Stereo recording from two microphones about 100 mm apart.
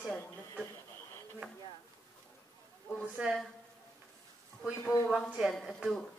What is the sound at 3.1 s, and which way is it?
Speech, 10° right (ahead or behind).